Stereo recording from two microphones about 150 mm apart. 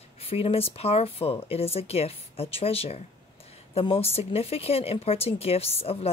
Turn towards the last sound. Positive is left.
turn(degrees=40)  # may be behind; listen again after turning